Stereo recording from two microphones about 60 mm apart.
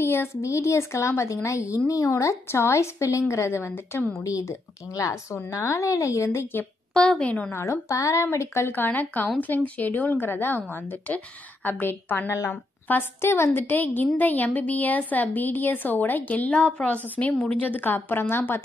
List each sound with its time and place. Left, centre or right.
0.0 s a woman's voice: left
4.4 s a woman's voice: left
6.9 s a woman's voice: centre
7.9 s a woman's voice: left
8.6 s a woman's voice: left
13.2 s a woman's voice: left